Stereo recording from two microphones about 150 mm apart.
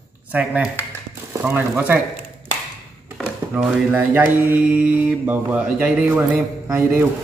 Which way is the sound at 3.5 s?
10° right (ahead or behind).